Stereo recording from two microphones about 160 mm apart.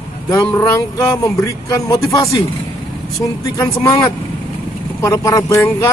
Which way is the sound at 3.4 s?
20° left (ahead or behind).